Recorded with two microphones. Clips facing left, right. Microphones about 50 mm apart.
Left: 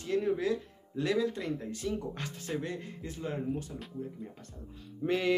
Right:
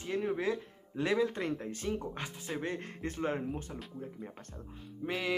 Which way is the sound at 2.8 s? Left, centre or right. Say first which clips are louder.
Right 3 dB; right.